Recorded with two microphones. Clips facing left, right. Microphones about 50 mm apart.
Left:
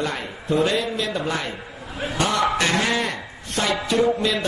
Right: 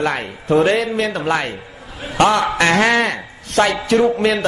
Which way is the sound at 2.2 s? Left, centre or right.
Right.